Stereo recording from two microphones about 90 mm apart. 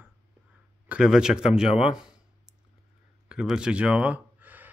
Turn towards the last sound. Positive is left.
turn(degrees=-20)  # may be behind; listen again after turning